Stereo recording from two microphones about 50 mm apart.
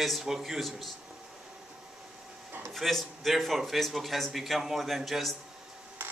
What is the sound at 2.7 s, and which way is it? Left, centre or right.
Speech, centre.